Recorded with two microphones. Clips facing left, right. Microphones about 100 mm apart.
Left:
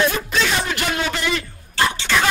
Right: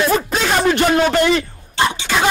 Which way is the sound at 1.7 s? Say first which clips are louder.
Right 2 dB; 20° right (ahead or behind).